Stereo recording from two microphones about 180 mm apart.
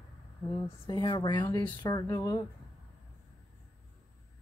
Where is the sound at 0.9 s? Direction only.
25° left (ahead or behind).